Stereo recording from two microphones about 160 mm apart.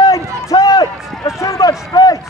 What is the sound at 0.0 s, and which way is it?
Run, 20° left (ahead or behind).